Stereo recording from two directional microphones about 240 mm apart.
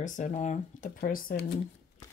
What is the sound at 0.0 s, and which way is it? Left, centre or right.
A woman's voice, left.